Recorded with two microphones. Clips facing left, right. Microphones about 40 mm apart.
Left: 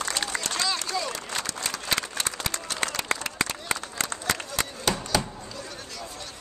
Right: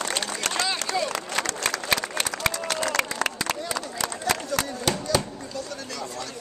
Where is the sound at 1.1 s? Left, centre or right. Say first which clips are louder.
Right 5 dB; right.